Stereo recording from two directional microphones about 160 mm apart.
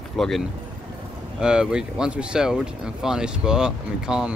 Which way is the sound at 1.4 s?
5° right (ahead or behind).